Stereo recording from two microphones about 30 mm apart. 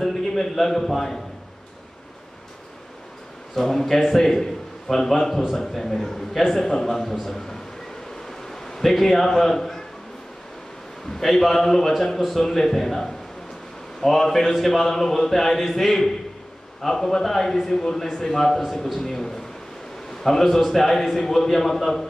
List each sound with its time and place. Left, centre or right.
0.0 s a man's voice: centre
3.5 s a man's voice: centre
8.3 s bee: centre
9.0 s a man's voice: centre
11.1 s a man's voice: centre